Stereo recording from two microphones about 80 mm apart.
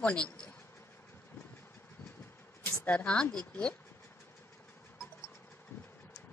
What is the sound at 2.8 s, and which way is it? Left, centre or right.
Speech, centre.